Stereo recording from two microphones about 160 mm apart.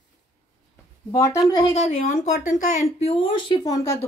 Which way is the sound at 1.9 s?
50° left (ahead or behind).